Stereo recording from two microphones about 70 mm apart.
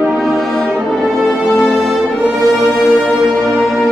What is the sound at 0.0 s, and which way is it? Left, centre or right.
Brass instrument, centre.